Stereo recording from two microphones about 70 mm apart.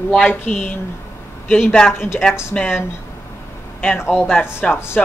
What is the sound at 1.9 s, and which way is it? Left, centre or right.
Speech, left.